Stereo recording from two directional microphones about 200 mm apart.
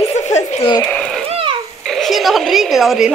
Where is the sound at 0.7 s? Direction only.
10° left (ahead or behind).